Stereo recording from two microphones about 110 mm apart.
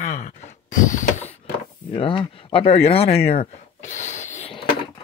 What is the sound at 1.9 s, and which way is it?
Speech, 50° left (ahead or behind).